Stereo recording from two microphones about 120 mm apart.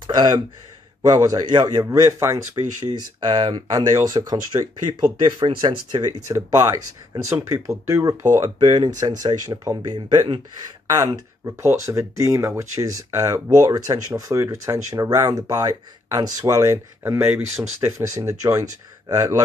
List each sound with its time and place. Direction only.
0.0 s speech: 35° right (ahead or behind)
1.9 s speech: 25° right (ahead or behind)
8.6 s speech: 40° right (ahead or behind)
10.9 s speech: 30° right (ahead or behind)